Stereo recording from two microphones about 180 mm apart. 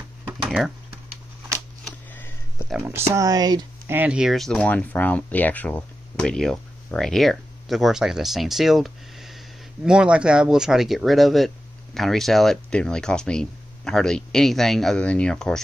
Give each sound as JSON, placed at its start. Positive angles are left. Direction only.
{"t": 0.3, "sound": "typing", "side_deg": -5}
{"t": 2.1, "sound": "a sound", "side_deg": 15}
{"t": 3.1, "sound": "speech", "side_deg": -20}
{"t": 3.9, "sound": "speech", "side_deg": -5}